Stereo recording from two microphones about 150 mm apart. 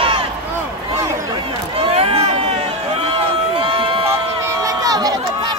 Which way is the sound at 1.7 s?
40° right (ahead or behind).